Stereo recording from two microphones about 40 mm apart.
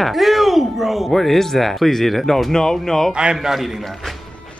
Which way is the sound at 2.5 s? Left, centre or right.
Centre.